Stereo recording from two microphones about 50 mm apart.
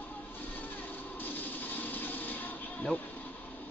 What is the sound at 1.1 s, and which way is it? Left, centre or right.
Music, left.